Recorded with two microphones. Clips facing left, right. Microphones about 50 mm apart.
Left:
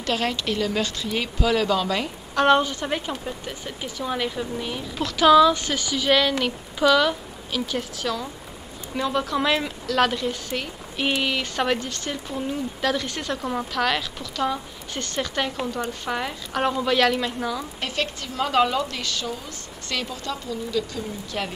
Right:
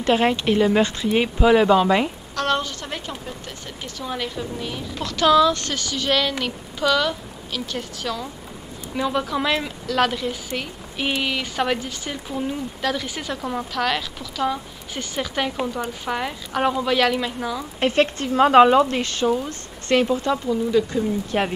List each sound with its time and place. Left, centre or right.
0.0 s speech: right
2.3 s speech: centre
17.7 s speech: right